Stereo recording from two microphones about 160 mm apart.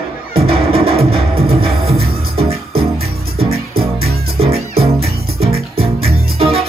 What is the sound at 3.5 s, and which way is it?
Music, 70° right (ahead or behind).